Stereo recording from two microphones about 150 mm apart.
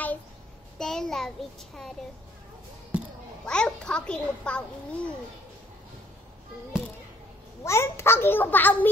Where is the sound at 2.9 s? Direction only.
10° right (ahead or behind).